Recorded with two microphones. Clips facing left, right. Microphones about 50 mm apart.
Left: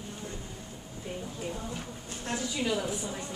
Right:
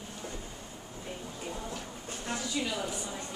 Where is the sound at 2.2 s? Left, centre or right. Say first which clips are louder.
Left 3 dB; centre.